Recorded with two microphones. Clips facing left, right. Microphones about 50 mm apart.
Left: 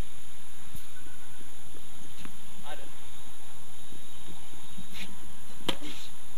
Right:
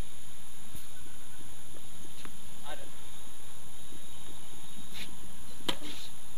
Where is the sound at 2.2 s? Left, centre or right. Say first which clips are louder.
Left 2 dB; centre.